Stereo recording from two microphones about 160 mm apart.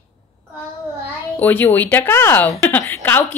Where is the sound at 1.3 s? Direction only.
10° left (ahead or behind).